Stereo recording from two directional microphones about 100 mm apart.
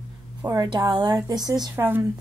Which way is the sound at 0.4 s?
35° right (ahead or behind).